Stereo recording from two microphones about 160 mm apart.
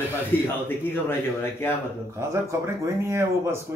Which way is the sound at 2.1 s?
15° right (ahead or behind).